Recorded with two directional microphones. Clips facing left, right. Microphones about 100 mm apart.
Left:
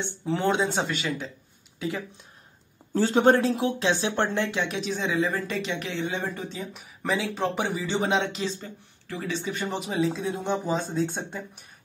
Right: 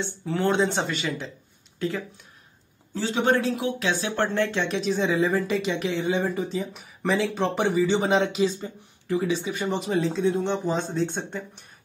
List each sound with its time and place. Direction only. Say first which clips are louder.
0.0 s speech: right 1 dB; 20° left (ahead or behind)
0.7 s speech: even; centre (ahead or behind)
1.8 s speech: right 2 dB; 15° left (ahead or behind)
2.9 s speech: left 4 dB; 45° left (ahead or behind)
3.3 s speech: even; 35° left (ahead or behind)
4.1 s speech: right 2 dB; 15° left (ahead or behind); by 9.7 s 10° right (ahead or behind)
9.7 s speech: right 2 dB; centre (ahead or behind)